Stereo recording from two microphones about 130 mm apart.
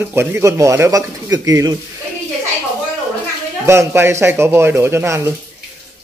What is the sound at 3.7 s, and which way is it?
A man's voice, 20° right (ahead or behind).